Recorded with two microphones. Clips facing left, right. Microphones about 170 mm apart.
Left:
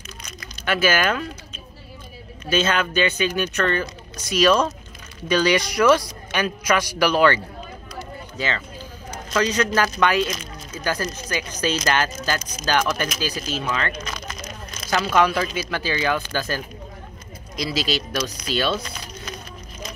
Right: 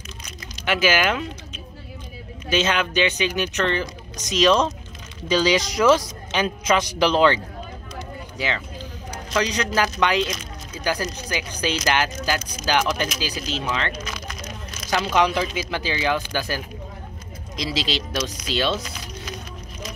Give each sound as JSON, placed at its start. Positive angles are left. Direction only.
{"t": 0.7, "sound": "speech", "side_deg": -15}
{"t": 2.5, "sound": "speech", "side_deg": -15}
{"t": 4.3, "sound": "speech", "side_deg": 10}
{"t": 5.8, "sound": "speech", "side_deg": -10}
{"t": 6.4, "sound": "a woman's voice", "side_deg": -25}
{"t": 8.4, "sound": "speech", "side_deg": -15}
{"t": 14.0, "sound": "a sound", "side_deg": -5}
{"t": 14.9, "sound": "speech", "side_deg": -15}
{"t": 15.4, "sound": "a woman's voice", "side_deg": -5}